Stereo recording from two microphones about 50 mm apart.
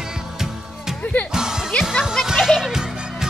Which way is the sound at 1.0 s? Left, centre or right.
Left.